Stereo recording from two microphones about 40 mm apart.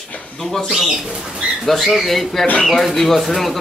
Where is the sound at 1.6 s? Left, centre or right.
Centre.